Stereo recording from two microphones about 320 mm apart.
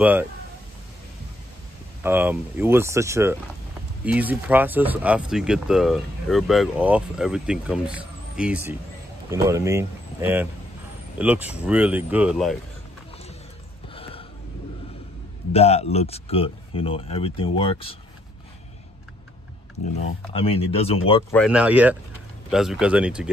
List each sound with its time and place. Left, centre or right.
0.0 s speech: centre
2.0 s speech: centre
13.9 s a sound: centre
15.5 s speech: centre
20.3 s speech: centre
21.3 s speech: centre